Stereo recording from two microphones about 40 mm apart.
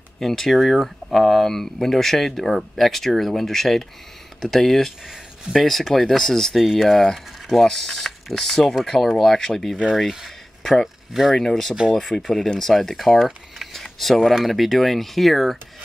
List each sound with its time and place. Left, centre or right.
0.2 s speech: centre
6.5 s speech: centre
9.8 s speech: centre
11.3 s speech: centre